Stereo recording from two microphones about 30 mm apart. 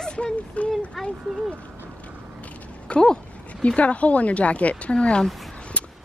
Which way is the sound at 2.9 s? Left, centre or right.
Left.